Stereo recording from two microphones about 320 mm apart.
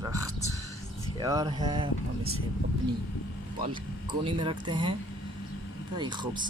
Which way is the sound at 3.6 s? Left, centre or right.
Centre.